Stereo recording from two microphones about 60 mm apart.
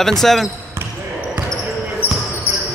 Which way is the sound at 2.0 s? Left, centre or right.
Left.